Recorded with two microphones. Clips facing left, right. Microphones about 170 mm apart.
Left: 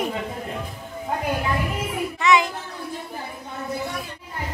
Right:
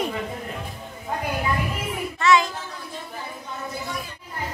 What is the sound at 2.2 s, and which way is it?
Child singing, 15° left (ahead or behind).